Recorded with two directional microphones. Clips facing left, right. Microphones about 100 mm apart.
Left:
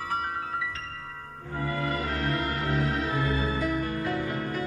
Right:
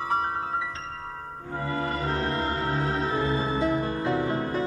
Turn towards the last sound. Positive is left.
turn(degrees=-30)  # may be behind; listen again after turning